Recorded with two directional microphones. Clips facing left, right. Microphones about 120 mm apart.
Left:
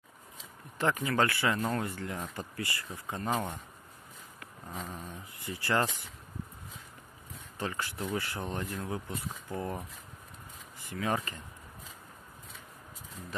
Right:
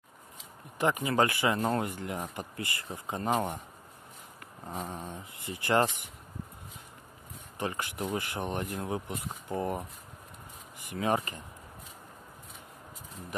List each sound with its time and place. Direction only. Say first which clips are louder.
0.7 s speech: right 2 dB; 15° right (ahead or behind)
4.8 s dog: right 3 dB; 30° right (ahead or behind)
5.1 s speech: right 1 dB; 20° right (ahead or behind)
7.5 s speech: right 2 dB; 20° right (ahead or behind)
10.9 s speech: right 3 dB; 20° right (ahead or behind)